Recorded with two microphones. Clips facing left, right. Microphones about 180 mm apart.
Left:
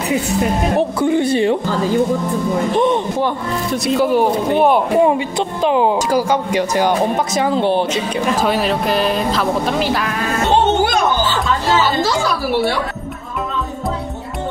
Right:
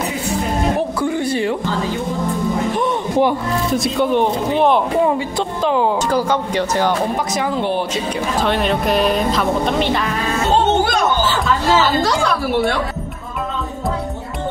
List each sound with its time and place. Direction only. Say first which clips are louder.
0.7 s speech: left 4 dB; 25° left (ahead or behind)
3.7 s speech: left 2 dB; centre (ahead or behind)
5.0 s speech: left 2 dB; 15° left (ahead or behind)
7.3 s speech: left 5 dB; 30° left (ahead or behind)
8.4 s speech: right 2 dB; 5° left (ahead or behind)
12.0 s speech: even; centre (ahead or behind)